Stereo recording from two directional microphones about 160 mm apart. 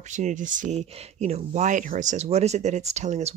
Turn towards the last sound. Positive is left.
turn(degrees=-45)  # may be behind; listen again after turning